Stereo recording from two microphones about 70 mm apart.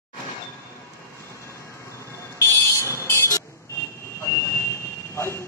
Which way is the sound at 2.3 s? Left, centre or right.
Left.